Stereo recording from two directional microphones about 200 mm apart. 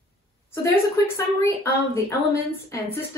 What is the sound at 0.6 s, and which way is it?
A woman's voice, 15° left (ahead or behind).